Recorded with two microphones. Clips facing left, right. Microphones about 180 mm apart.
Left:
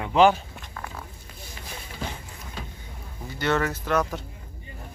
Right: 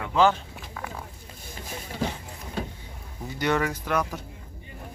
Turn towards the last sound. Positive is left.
turn(degrees=-10)  # may be behind; listen again after turning